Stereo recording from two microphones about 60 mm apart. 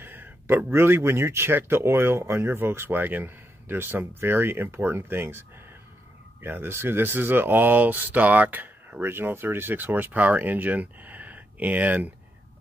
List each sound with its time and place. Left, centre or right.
0.0 s a sound: right
0.7 s speech: right
6.4 s speech: right
9.0 s speech: right